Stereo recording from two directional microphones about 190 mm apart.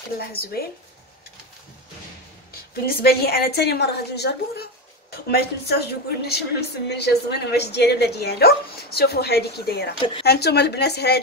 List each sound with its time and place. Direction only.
0.2 s speech: 55° left (ahead or behind)
2.7 s speech: 55° left (ahead or behind)